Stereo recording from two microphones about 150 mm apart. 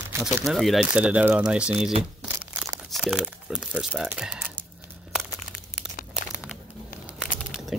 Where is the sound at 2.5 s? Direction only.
15° right (ahead or behind).